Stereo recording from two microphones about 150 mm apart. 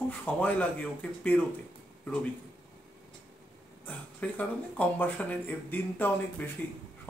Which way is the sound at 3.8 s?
10° left (ahead or behind).